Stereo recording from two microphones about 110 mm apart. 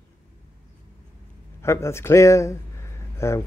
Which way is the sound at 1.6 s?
25° left (ahead or behind).